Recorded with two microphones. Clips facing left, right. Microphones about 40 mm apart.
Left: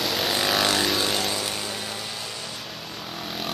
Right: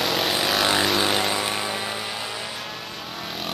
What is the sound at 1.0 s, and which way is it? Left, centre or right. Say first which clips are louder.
Vehicle: right 3 dB; right.